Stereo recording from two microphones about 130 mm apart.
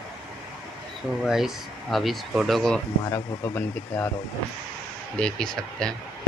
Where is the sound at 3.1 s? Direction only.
15° left (ahead or behind).